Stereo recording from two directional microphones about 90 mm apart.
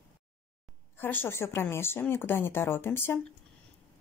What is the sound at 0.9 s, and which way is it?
Speech, 25° left (ahead or behind).